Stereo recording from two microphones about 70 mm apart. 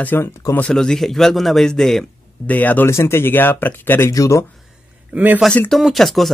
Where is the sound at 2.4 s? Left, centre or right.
Left.